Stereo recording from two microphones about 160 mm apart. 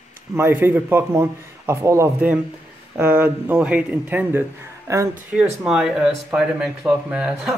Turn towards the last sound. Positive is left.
turn(degrees=-5)  # may be behind; listen again after turning